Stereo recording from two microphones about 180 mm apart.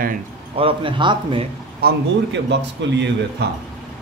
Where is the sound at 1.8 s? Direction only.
65° right (ahead or behind).